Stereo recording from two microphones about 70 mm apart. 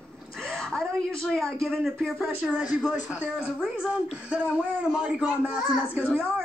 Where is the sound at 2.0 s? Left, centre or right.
Centre.